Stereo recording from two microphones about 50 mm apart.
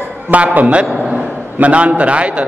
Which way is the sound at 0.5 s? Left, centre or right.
Right.